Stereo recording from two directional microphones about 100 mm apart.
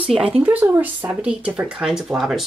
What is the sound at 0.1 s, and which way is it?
Speech, 10° right (ahead or behind).